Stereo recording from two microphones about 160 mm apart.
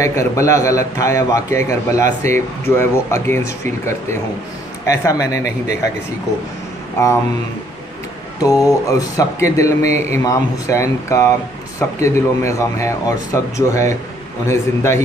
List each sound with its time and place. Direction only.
0.0 s a man's voice: 20° left (ahead or behind)
4.8 s a man's voice: 20° left (ahead or behind)
8.4 s a man's voice: 20° left (ahead or behind)
9.9 s a man's voice: 45° right (ahead or behind)
10.2 s a man's voice: 20° left (ahead or behind)